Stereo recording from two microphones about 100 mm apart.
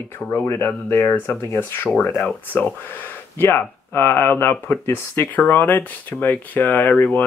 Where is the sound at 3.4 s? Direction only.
25° left (ahead or behind).